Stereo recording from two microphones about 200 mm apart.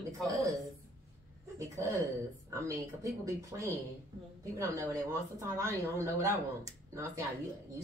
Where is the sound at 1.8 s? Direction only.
15° right (ahead or behind).